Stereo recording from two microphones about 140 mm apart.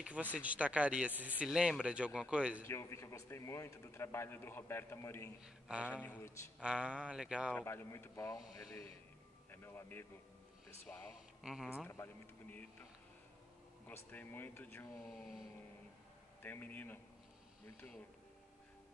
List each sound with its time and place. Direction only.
0.0 s speech: 10° right (ahead or behind)
2.6 s speech: 20° left (ahead or behind)
5.4 s speech: 10° right (ahead or behind)
5.9 s speech: 10° left (ahead or behind)
6.6 s speech: 5° right (ahead or behind)
7.5 s speech: 15° left (ahead or behind)
11.4 s speech: 5° right (ahead or behind)
11.9 s speech: 15° left (ahead or behind)
13.8 s speech: 15° left (ahead or behind)
16.4 s speech: 15° left (ahead or behind)